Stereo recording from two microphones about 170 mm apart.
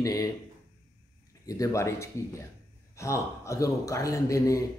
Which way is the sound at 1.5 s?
20° left (ahead or behind).